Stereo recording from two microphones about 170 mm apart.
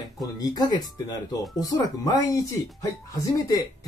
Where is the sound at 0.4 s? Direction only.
25° left (ahead or behind).